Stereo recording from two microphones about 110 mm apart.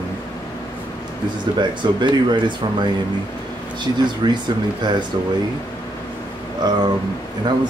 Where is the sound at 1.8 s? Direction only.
45° right (ahead or behind).